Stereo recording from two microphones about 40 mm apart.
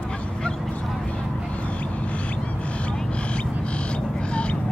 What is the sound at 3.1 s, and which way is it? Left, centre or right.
Frog, left.